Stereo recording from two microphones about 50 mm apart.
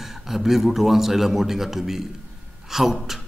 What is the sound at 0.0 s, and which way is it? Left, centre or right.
A man's voice, centre.